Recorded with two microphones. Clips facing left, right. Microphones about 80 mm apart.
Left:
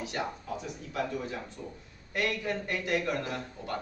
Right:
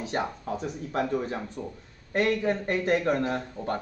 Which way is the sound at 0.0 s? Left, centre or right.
Right.